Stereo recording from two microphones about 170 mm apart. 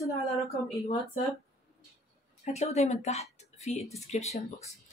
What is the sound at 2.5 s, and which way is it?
Speech, 40° left (ahead or behind).